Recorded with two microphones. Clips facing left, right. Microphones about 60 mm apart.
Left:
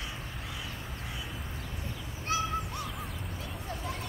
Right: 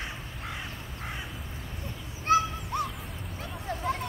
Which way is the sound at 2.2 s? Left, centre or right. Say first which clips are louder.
Right 7 dB; right.